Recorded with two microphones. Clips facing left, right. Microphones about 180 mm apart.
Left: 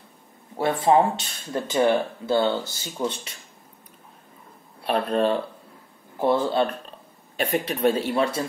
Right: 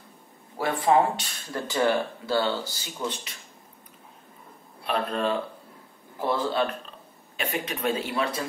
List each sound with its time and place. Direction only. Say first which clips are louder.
0.6 s speech: left 3 dB; 25° left (ahead or behind)
4.8 s speech: left 5 dB; 35° left (ahead or behind)